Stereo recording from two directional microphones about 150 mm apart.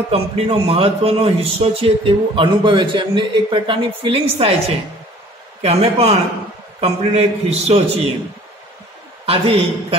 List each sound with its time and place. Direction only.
0.1 s a man's voice: 40° right (ahead or behind)
9.2 s a man's voice: 40° right (ahead or behind)